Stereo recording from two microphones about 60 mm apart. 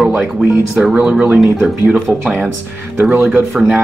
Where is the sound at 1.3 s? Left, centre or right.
Centre.